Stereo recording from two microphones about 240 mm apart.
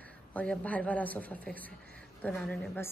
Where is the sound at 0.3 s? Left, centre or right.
Centre.